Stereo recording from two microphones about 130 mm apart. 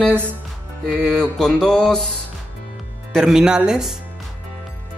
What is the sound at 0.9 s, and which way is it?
Mantra, 5° left (ahead or behind).